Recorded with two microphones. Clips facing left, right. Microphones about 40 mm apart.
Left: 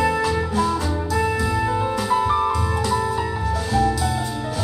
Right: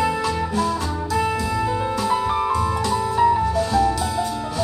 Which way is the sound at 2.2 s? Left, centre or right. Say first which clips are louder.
Even; centre.